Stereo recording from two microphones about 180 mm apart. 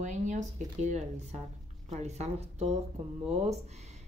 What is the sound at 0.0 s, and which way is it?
Speech, 45° right (ahead or behind).